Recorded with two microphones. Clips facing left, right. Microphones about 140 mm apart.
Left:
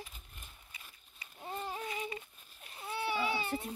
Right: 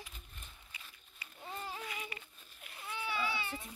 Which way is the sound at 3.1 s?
25° left (ahead or behind).